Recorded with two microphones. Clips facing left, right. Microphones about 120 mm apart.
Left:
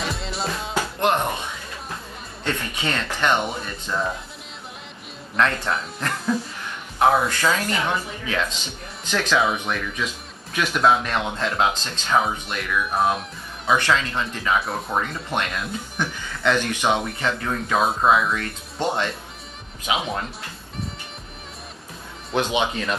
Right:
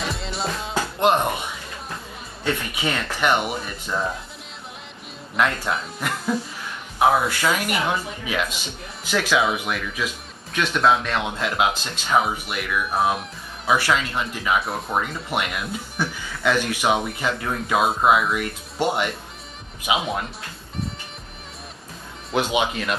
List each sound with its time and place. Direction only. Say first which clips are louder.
0.0 s music: even; centre (ahead or behind)
0.9 s speech: right 3 dB; 20° right (ahead or behind)
5.3 s speech: even; 10° right (ahead or behind)
22.3 s speech: even; 15° right (ahead or behind)